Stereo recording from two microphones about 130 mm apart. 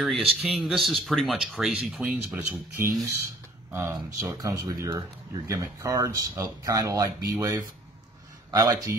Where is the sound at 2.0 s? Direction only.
15° right (ahead or behind).